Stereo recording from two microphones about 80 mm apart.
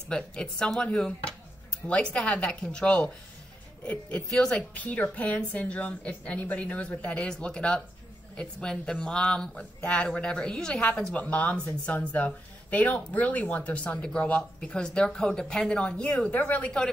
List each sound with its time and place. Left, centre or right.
0.1 s speech: centre